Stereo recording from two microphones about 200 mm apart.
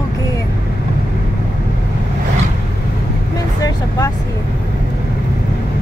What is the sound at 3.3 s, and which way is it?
Vehicle, 20° left (ahead or behind).